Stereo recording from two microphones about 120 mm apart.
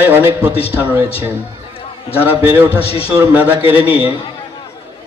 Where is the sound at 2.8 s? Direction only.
55° left (ahead or behind).